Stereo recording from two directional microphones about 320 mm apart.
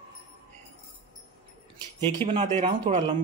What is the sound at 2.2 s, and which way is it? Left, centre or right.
Speech, centre.